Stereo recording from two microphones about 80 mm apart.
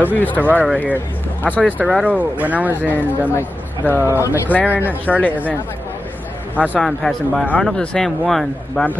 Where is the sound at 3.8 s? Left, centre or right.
Left.